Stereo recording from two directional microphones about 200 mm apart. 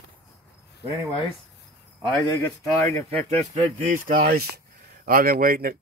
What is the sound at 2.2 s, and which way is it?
Speech, 15° left (ahead or behind).